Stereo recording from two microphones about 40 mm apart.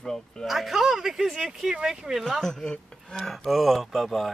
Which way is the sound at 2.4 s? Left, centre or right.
Centre.